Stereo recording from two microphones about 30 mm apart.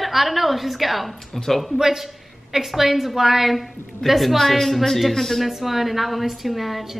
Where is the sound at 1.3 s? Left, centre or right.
Centre.